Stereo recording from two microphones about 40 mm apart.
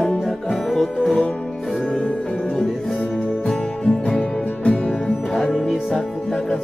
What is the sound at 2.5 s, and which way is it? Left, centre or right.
Music, centre.